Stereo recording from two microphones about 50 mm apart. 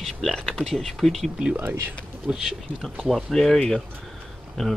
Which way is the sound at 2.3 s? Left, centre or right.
Centre.